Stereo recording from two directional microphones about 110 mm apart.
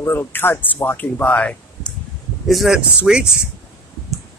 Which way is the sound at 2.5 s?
Centre (ahead or behind).